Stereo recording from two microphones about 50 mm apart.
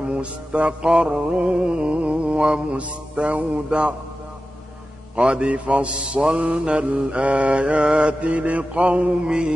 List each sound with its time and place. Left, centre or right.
0.0 s mantra: right
5.1 s mantra: centre